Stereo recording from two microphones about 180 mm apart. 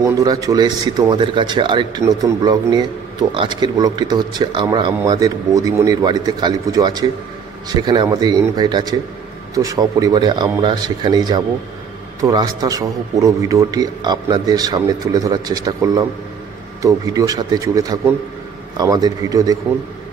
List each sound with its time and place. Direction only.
0.0 s speech: 20° right (ahead or behind)